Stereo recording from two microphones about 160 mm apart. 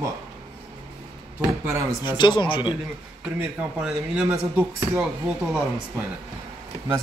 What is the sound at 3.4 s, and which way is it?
Speech, 5° right (ahead or behind).